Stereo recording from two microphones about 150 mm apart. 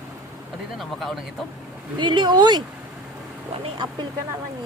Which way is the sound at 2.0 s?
30° right (ahead or behind).